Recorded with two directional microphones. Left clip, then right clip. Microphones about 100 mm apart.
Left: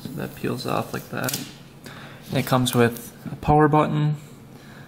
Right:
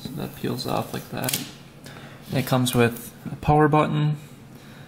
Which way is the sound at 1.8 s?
Centre (ahead or behind).